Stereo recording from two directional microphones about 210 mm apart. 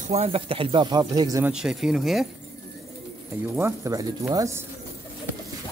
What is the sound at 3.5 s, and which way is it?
Speech, 15° right (ahead or behind).